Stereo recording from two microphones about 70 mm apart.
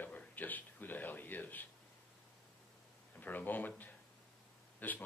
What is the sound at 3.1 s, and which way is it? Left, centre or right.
Speech, left.